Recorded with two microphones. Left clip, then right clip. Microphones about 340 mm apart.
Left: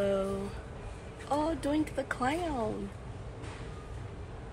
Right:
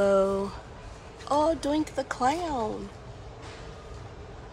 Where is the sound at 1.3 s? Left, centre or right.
Centre.